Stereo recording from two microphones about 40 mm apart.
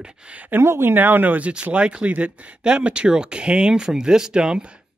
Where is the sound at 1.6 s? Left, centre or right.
Right.